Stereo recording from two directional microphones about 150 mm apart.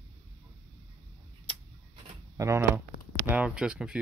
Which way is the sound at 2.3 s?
20° right (ahead or behind).